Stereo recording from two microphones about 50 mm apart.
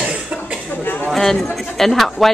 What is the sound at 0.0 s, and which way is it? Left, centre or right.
Cough, right.